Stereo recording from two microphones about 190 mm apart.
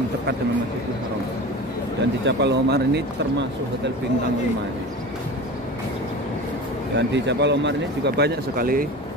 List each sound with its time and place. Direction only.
2.2 s speech: 65° right (ahead or behind)
7.0 s speech: 65° right (ahead or behind); by 8.8 s 50° right (ahead or behind)